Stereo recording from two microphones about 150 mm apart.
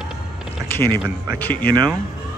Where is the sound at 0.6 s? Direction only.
15° left (ahead or behind).